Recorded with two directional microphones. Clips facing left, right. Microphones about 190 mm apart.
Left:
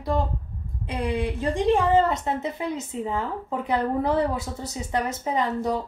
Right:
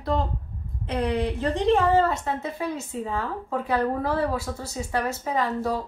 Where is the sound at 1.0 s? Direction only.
10° left (ahead or behind).